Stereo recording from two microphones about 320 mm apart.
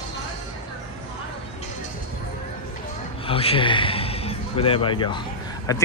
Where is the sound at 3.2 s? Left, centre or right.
Centre.